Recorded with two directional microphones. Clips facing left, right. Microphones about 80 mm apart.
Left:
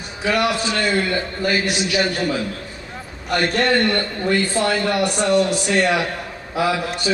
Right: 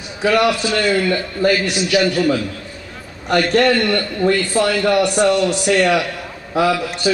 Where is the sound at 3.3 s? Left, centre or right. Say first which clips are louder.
Right 4 dB; left.